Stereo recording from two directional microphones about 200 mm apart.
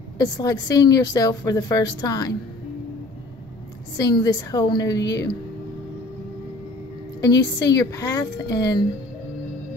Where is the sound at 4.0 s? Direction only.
20° left (ahead or behind).